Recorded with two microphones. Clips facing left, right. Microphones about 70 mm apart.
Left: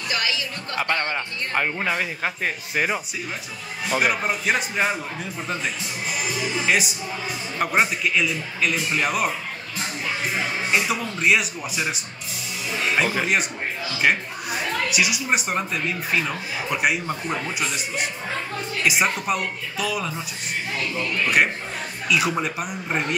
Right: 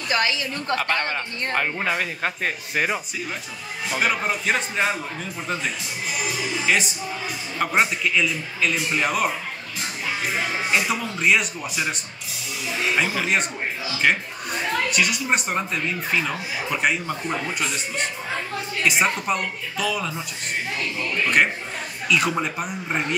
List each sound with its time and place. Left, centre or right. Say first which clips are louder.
0.1 s a woman's voice: right 4 dB; right
0.7 s speech: left 2 dB; centre
1.8 s a woman's voice: even; centre
7.5 s a woman's voice: even; centre
10.7 s a woman's voice: left 1 dB; centre
22.1 s a woman's voice: even; centre